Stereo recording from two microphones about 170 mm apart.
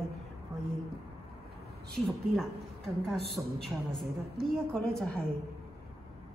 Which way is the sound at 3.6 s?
Centre (ahead or behind).